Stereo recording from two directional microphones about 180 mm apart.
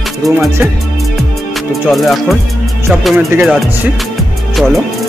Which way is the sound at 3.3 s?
10° right (ahead or behind).